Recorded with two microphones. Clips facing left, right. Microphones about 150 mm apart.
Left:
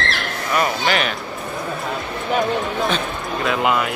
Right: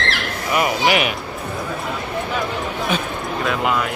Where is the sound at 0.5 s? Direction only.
15° right (ahead or behind).